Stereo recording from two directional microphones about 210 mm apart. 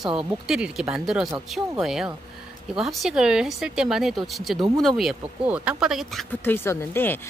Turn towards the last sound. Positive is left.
turn(degrees=10)  # may be behind; listen again after turning